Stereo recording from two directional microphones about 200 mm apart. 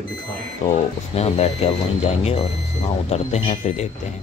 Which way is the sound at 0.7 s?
35° left (ahead or behind).